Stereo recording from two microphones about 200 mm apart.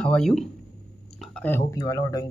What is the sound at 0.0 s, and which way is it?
Speech, 5° left (ahead or behind).